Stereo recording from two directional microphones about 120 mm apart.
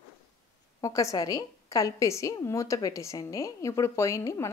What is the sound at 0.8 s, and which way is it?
A woman's voice, 25° left (ahead or behind).